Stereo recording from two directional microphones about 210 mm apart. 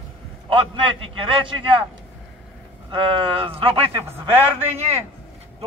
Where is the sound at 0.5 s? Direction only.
25° right (ahead or behind).